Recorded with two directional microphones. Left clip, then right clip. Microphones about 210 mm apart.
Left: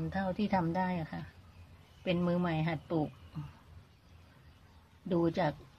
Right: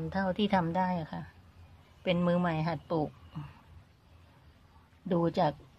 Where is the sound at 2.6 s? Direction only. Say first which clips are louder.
Right 2 dB; 10° right (ahead or behind).